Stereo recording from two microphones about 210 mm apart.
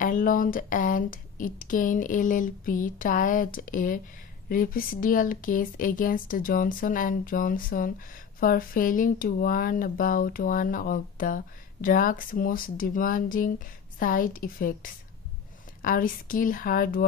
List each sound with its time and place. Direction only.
0.0 s speech: 40° left (ahead or behind)